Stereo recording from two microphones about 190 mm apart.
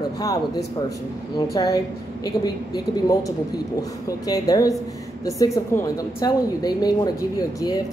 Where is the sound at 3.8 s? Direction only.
20° left (ahead or behind).